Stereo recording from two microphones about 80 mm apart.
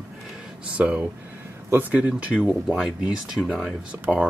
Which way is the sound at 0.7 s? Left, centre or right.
Centre.